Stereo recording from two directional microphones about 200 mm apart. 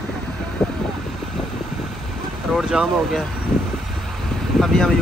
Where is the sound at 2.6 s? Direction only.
Centre (ahead or behind).